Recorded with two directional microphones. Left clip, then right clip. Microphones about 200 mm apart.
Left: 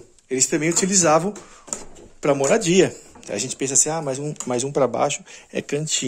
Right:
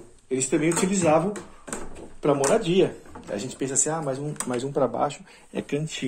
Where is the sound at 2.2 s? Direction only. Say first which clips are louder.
Left 3 dB; 65° left (ahead or behind).